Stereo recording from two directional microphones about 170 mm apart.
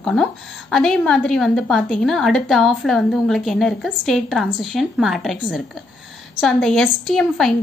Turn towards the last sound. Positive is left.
turn(degrees=5)  # may be behind; listen again after turning